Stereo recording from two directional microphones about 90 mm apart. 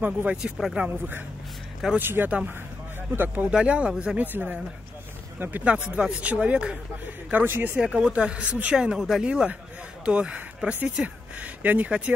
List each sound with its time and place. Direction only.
0.0 s speech: 15° right (ahead or behind)
0.4 s speech: 5° right (ahead or behind)
0.8 s speech: 20° right (ahead or behind)
4.2 s speech: 20° right (ahead or behind)
7.8 s speech: 10° right (ahead or behind)